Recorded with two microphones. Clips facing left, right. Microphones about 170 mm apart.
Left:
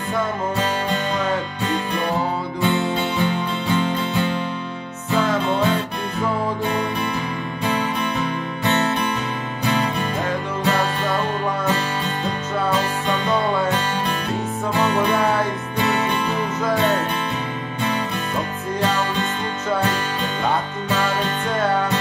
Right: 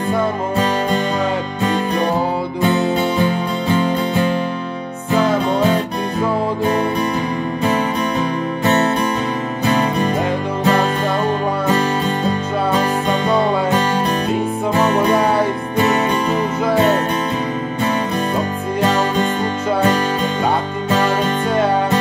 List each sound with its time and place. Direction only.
2.6 s music: 40° right (ahead or behind)
8.6 s music: 40° right (ahead or behind)
13.7 s music: 40° right (ahead or behind)
18.9 s music: 40° right (ahead or behind)